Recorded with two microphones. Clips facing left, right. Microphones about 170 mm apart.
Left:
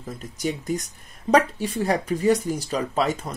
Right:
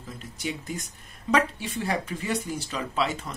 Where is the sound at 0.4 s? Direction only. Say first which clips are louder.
Left 7 dB; 40° left (ahead or behind).